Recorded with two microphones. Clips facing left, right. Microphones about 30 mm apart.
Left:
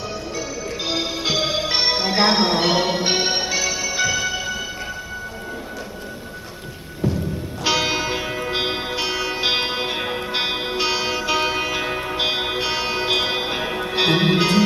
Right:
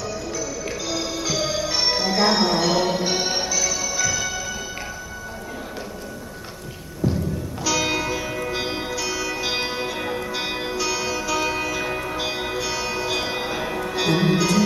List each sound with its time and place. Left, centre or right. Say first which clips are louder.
0.8 s music: left 4 dB; left
7.0 s music: even; left